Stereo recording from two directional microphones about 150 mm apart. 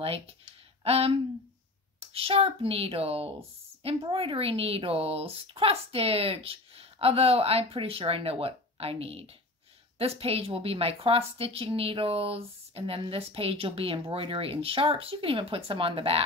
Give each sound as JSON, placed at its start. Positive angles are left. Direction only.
{"t": 0.8, "sound": "speech", "side_deg": -40}